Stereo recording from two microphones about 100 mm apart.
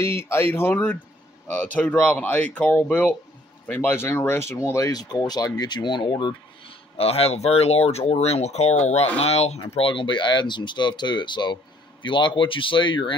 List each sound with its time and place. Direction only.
0.0 s speech: 25° left (ahead or behind); by 6.3 s 50° left (ahead or behind)
7.0 s speech: 85° left
9.8 s speech: 55° left (ahead or behind)